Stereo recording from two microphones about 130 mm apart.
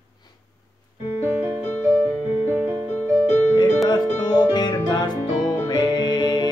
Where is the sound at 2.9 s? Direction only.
15° left (ahead or behind).